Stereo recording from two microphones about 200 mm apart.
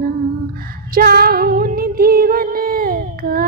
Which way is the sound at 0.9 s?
50° right (ahead or behind).